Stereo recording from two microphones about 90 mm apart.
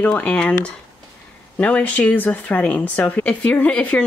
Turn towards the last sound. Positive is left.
turn(degrees=15)  # may be behind; listen again after turning